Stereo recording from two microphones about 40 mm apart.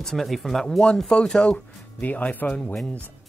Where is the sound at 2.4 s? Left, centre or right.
Left.